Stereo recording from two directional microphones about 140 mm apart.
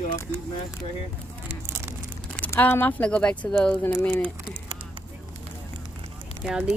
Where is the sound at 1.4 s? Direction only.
20° right (ahead or behind).